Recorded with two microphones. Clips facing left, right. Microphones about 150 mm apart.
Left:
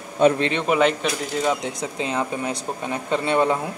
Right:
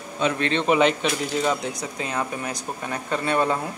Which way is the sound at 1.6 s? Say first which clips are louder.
Left 2 dB; 25° left (ahead or behind).